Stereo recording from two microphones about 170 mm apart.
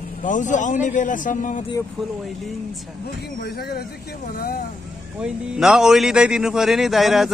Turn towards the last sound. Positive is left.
turn(degrees=0)  # may be behind; listen again after turning